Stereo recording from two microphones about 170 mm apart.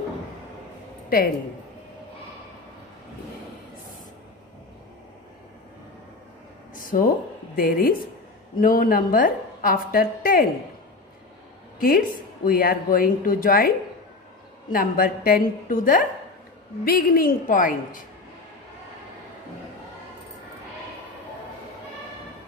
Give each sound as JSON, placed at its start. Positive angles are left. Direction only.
{"t": 6.7, "sound": "a sound", "side_deg": 55}
{"t": 7.5, "sound": "a woman's voice", "side_deg": 60}
{"t": 11.8, "sound": "a woman's voice", "side_deg": 55}